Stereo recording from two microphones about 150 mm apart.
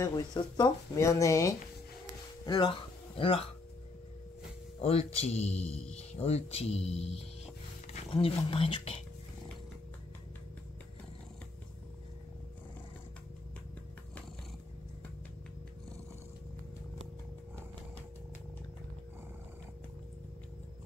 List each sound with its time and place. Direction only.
0.0 s speech: 25° left (ahead or behind); by 3.4 s 40° left (ahead or behind)
4.7 s speech: 40° left (ahead or behind)